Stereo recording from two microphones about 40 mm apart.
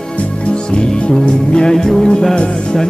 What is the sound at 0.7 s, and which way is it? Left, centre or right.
Music, left.